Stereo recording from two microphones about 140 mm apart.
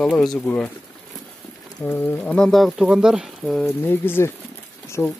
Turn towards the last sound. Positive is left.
turn(degrees=15)  # may be behind; listen again after turning